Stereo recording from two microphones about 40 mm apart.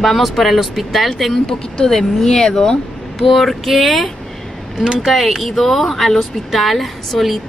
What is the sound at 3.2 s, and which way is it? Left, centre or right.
Speech, centre.